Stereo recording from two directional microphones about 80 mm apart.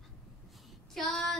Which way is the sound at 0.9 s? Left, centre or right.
Centre.